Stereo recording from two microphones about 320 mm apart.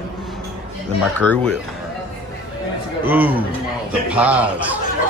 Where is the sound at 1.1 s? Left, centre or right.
Centre.